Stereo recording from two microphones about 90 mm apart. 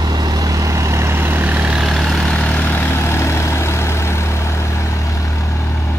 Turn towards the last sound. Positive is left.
turn(degrees=30)  # may be behind; listen again after turning